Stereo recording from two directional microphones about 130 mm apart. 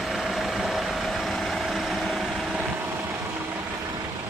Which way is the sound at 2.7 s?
20° right (ahead or behind).